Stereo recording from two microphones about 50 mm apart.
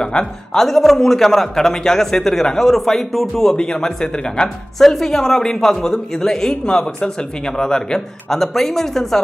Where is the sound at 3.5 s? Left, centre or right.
Centre.